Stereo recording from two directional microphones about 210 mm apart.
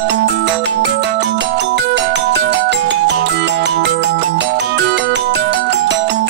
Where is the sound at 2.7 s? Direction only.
55° right (ahead or behind).